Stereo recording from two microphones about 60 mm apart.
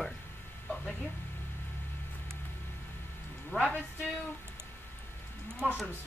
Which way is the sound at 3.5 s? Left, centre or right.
Left.